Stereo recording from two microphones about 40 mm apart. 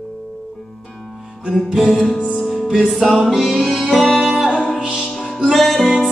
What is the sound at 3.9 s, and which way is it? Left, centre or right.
Music, centre.